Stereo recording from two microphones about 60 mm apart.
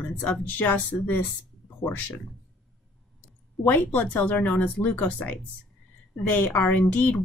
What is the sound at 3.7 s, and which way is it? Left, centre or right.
Speech, left.